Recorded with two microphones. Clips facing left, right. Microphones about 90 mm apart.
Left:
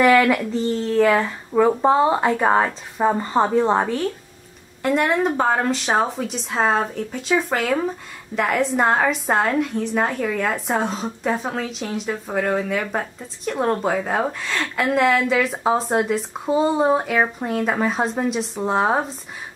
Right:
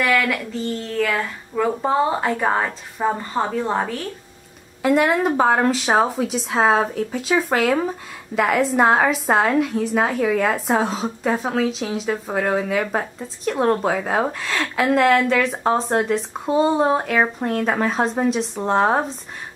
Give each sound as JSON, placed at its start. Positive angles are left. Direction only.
{"t": 0.0, "sound": "speech", "side_deg": 20}
{"t": 4.8, "sound": "a woman's voice", "side_deg": -5}